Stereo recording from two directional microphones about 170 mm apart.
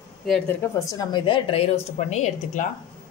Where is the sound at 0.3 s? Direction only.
10° left (ahead or behind); by 2.6 s 40° left (ahead or behind).